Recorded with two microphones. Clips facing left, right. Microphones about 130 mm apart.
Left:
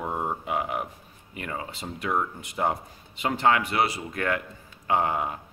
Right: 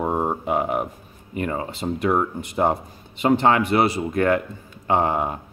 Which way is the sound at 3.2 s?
30° right (ahead or behind).